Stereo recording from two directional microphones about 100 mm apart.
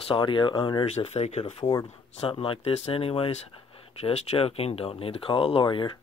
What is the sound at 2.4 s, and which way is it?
Speech, 70° left (ahead or behind).